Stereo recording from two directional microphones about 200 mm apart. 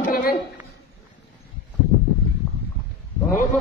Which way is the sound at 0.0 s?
50° left (ahead or behind).